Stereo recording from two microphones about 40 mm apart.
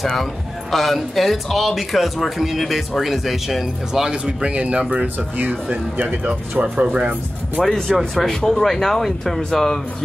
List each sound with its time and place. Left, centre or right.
0.0 s speech: centre
4.1 s speech: right
5.7 s speech: right
6.6 s speech: right
8.0 s speech: centre
8.3 s speech: centre